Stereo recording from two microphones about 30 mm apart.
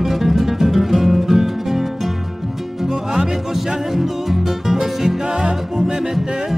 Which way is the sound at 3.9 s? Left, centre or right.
Centre.